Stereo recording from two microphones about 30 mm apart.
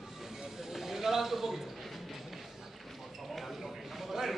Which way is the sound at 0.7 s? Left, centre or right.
Centre.